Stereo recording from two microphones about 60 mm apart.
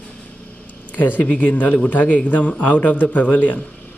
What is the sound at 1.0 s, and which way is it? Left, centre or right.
Speech, left.